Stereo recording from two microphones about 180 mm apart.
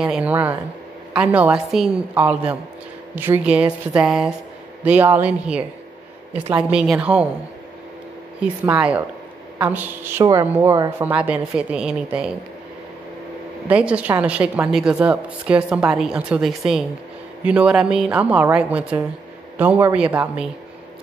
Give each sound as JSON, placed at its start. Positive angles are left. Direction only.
{"t": 0.0, "sound": "a woman's voice", "side_deg": -5}
{"t": 6.7, "sound": "a woman's voice", "side_deg": -5}
{"t": 8.4, "sound": "a woman's voice", "side_deg": -5}
{"t": 13.7, "sound": "a woman's voice", "side_deg": -5}